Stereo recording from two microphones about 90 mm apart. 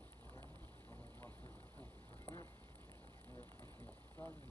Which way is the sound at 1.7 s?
25° left (ahead or behind).